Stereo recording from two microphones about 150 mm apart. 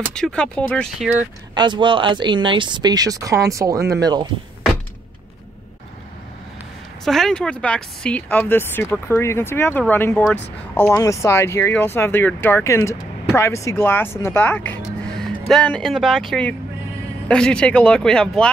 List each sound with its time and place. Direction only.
0.1 s speech: 5° left (ahead or behind)
0.9 s speech: 5° right (ahead or behind)
1.5 s speech: 30° right (ahead or behind)
7.1 s speech: 5° left (ahead or behind)